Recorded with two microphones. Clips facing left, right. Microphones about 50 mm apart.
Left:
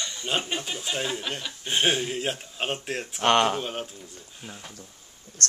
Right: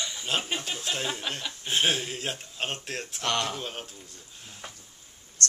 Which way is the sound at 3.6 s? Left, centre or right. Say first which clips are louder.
Left 5 dB; centre.